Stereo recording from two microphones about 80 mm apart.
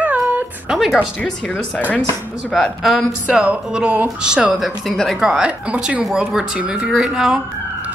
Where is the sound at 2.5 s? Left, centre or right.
Centre.